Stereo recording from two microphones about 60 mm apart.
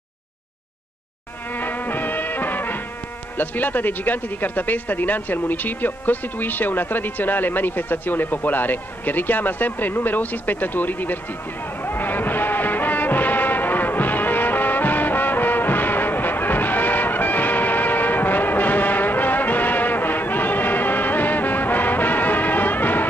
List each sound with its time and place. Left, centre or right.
1.5 s music: left
3.3 s speech: left
11.8 s music: left